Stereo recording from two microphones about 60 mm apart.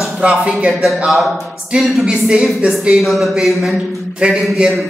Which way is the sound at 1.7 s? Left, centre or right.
Centre.